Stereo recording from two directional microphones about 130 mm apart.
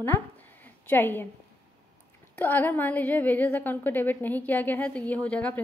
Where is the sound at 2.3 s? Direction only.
15° left (ahead or behind).